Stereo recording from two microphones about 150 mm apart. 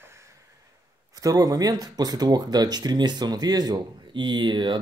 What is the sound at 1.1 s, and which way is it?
Speech, 25° right (ahead or behind).